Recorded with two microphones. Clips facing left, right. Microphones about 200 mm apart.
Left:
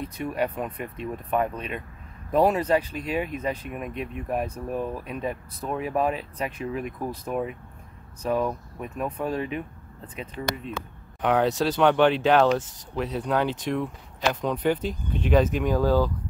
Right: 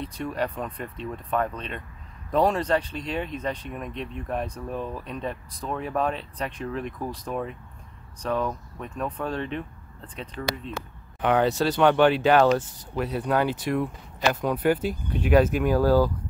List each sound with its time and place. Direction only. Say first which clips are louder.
0.0 s speech: left 1 dB; 10° left (ahead or behind)
10.4 s speech: even; 20° left (ahead or behind)
11.1 s speech: even; centre (ahead or behind)